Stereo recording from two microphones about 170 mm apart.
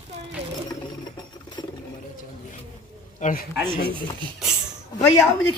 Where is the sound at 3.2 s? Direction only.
55° left (ahead or behind).